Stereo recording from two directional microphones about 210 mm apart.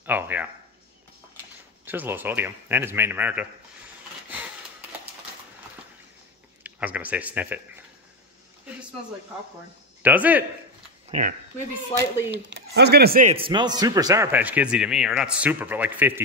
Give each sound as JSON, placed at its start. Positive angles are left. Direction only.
{"t": 0.0, "sound": "speech", "side_deg": -10}
{"t": 1.9, "sound": "a man's voice", "side_deg": -10}
{"t": 6.6, "sound": "speech", "side_deg": -5}
{"t": 10.0, "sound": "a man's voice", "side_deg": -10}
{"t": 11.1, "sound": "speech", "side_deg": -35}
{"t": 12.3, "sound": "speech", "side_deg": -55}
{"t": 13.3, "sound": "a man's voice", "side_deg": -25}